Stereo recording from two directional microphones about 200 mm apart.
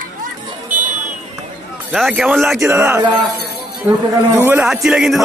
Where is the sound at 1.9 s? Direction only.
Centre (ahead or behind).